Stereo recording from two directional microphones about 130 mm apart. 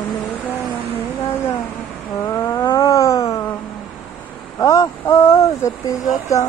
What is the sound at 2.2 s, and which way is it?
Cat, 25° left (ahead or behind).